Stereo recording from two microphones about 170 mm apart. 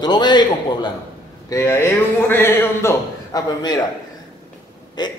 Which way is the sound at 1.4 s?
15° left (ahead or behind).